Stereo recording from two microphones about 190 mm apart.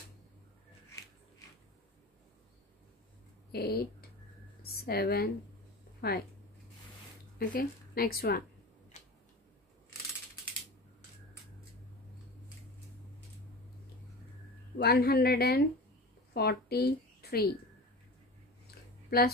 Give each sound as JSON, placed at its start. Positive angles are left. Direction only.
{"t": 3.5, "sound": "a woman's voice", "side_deg": 55}
{"t": 7.3, "sound": "speech", "side_deg": 50}
{"t": 14.8, "sound": "a woman's voice", "side_deg": 55}
{"t": 19.0, "sound": "speech", "side_deg": 55}